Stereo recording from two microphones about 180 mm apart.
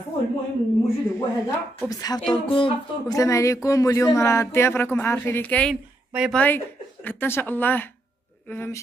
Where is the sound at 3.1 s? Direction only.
15° left (ahead or behind).